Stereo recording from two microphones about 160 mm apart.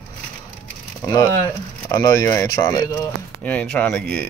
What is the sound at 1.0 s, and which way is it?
Speech, 20° left (ahead or behind).